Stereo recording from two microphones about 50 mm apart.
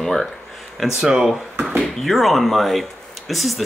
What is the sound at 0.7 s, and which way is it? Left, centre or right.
Speech, centre.